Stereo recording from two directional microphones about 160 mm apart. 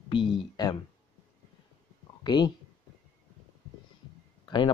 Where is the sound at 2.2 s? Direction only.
25° left (ahead or behind).